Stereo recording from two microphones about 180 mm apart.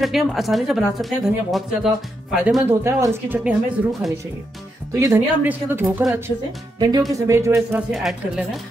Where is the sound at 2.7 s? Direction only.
15° right (ahead or behind).